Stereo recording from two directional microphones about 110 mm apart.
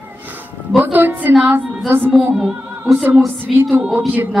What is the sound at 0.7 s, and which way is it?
A woman's voice, 15° right (ahead or behind).